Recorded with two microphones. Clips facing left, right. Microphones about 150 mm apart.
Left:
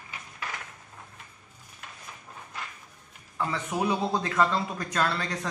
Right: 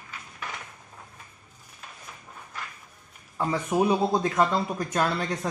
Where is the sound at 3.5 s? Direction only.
30° right (ahead or behind).